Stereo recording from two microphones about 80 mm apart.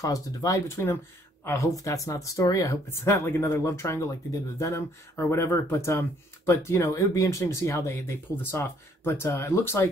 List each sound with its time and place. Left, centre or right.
0.0 s speech: left